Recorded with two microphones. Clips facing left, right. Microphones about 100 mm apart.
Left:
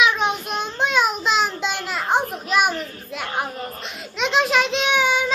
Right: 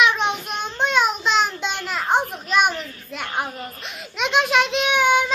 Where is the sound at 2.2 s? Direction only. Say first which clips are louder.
Left 3 dB; 40° left (ahead or behind).